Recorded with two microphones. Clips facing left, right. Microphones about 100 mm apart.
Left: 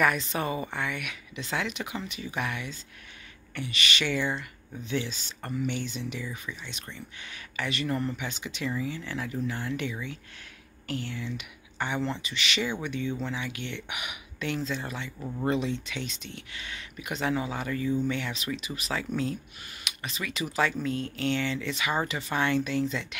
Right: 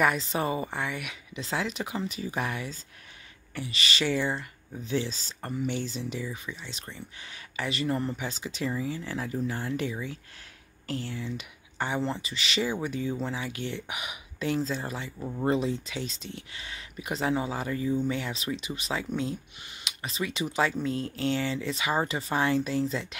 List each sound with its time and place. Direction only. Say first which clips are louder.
0.0 s speech: right 1 dB; 25° right (ahead or behind)
15.1 s speech: right 1 dB; 10° right (ahead or behind)
15.4 s speech: right 1 dB; 30° right (ahead or behind)